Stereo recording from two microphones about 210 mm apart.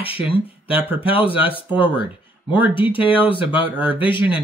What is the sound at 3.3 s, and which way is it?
Speech, 25° left (ahead or behind).